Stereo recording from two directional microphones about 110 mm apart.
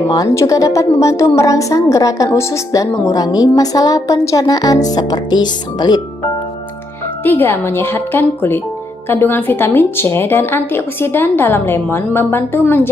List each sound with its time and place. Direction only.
0.1 s a woman's voice: 30° left (ahead or behind)
7.2 s speech: 20° left (ahead or behind)